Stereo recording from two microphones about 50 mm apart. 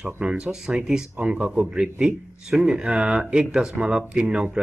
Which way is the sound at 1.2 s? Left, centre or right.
Right.